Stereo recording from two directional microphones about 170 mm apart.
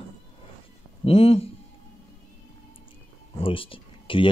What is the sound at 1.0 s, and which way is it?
Speech, 35° left (ahead or behind).